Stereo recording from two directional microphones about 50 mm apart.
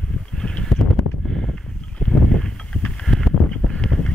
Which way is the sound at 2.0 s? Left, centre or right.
Centre.